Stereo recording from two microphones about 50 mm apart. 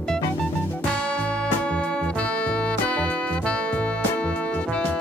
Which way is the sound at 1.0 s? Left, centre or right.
Left.